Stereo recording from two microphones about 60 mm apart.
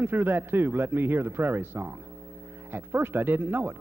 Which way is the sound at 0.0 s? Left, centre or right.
Right.